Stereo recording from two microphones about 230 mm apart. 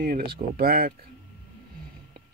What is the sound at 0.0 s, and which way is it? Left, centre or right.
Speech, right.